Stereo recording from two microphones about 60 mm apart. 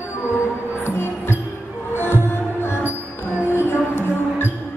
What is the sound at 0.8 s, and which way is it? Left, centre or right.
Music, left.